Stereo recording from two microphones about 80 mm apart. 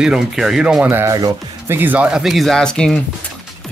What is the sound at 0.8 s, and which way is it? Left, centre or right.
Speech, right.